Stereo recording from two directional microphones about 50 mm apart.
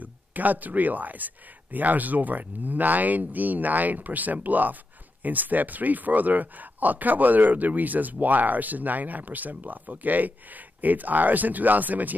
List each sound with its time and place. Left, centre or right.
0.0 s speech: right